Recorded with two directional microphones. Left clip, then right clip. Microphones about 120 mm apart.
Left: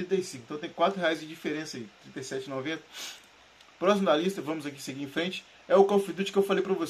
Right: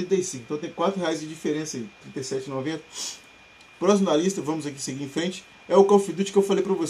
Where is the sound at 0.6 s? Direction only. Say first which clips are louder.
Right 1 dB; 5° right (ahead or behind).